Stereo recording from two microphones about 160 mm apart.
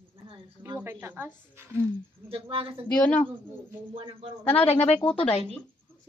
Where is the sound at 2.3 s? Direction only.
35° right (ahead or behind).